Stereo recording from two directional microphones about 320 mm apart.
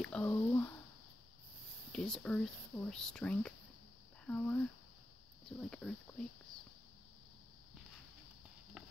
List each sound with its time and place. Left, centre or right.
0.0 s speech: centre
1.9 s speech: centre
5.7 s speech: centre